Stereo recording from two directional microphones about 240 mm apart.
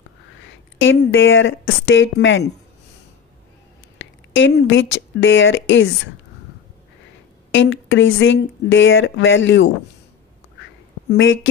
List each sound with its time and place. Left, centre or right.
0.7 s speech: left
4.0 s a sound: left
5.2 s speech: left
7.5 s speech: left
11.1 s speech: left